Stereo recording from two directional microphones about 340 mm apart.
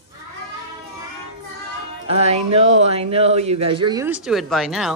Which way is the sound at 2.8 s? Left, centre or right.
Centre.